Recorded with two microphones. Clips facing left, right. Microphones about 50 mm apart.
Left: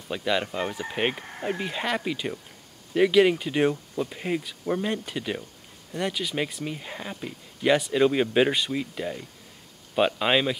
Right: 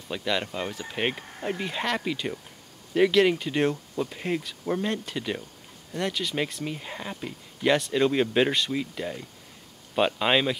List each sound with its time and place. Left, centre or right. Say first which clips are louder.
0.1 s speech: left 2 dB; centre